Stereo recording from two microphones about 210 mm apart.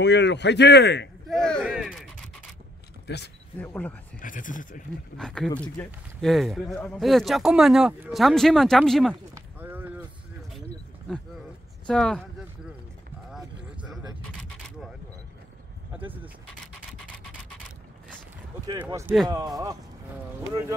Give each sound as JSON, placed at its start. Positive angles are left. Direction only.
{"t": 0.0, "sound": "a man's voice", "side_deg": 55}
{"t": 1.3, "sound": "a sound", "side_deg": 5}
{"t": 3.1, "sound": "speech", "side_deg": 50}
{"t": 3.5, "sound": "speech", "side_deg": 5}
{"t": 4.2, "sound": "speech", "side_deg": 40}
{"t": 5.1, "sound": "speech", "side_deg": 5}
{"t": 9.3, "sound": "a sound", "side_deg": -10}
{"t": 11.9, "sound": "speech", "side_deg": 0}
{"t": 13.3, "sound": "a sound", "side_deg": -5}
{"t": 16.0, "sound": "speech", "side_deg": -10}
{"t": 18.9, "sound": "speech", "side_deg": -15}